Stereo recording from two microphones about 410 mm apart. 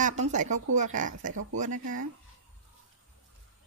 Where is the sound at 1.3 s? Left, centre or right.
Right.